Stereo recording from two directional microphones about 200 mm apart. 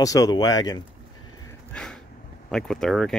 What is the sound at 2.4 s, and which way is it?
Speech, 5° left (ahead or behind).